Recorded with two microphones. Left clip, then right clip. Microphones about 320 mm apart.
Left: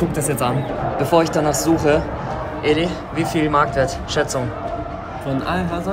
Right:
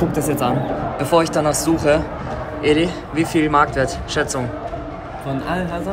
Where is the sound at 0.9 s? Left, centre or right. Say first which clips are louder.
Even; centre.